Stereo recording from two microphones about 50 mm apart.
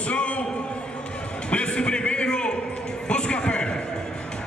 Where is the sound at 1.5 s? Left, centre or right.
Left.